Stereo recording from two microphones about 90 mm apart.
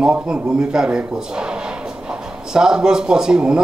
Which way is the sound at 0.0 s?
10° right (ahead or behind).